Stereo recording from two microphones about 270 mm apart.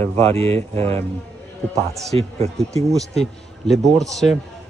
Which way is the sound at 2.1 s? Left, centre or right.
Right.